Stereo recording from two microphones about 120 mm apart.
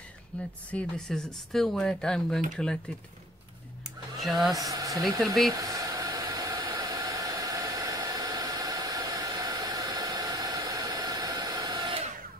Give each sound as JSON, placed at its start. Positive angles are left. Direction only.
{"t": 0.3, "sound": "speech", "side_deg": 10}
{"t": 4.2, "sound": "speech", "side_deg": 0}
{"t": 4.6, "sound": "speech", "side_deg": -30}
{"t": 5.2, "sound": "speech", "side_deg": 0}
{"t": 5.5, "sound": "hair dryer", "side_deg": -30}